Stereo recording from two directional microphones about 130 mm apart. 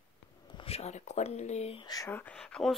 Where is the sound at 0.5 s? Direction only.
50° left (ahead or behind).